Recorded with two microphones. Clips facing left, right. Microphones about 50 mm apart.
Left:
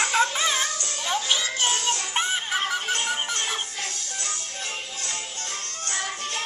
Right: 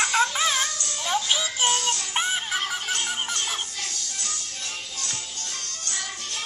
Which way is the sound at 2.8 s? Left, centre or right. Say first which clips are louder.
Left 2 dB; centre.